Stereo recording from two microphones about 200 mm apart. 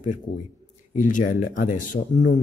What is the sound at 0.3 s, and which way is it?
Speech, 40° left (ahead or behind).